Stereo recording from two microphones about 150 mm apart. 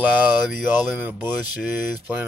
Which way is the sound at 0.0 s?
10° right (ahead or behind).